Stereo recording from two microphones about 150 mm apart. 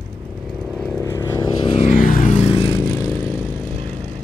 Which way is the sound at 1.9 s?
65° left (ahead or behind).